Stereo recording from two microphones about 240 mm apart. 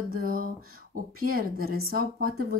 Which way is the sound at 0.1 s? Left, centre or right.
Right.